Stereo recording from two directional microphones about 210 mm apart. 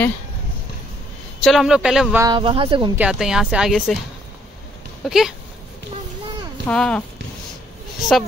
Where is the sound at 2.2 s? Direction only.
25° right (ahead or behind).